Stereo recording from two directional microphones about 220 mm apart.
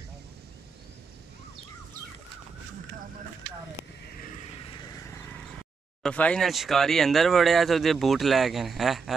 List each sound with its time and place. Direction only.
4.6 s vehicle: 20° left (ahead or behind)
6.0 s speech: 5° left (ahead or behind)